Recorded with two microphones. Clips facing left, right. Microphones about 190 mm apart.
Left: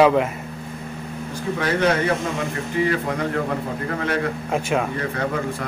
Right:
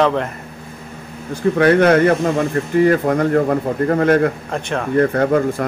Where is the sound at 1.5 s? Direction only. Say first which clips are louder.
Right 8 dB; 60° right (ahead or behind).